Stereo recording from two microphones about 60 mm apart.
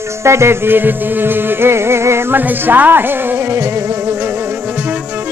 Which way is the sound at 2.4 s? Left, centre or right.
Right.